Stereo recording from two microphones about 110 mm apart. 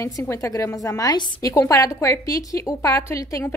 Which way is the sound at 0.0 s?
25° left (ahead or behind).